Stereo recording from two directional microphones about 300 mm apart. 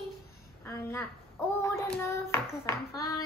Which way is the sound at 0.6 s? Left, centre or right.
Centre.